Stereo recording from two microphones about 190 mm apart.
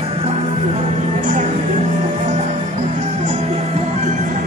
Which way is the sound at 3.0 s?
35° right (ahead or behind).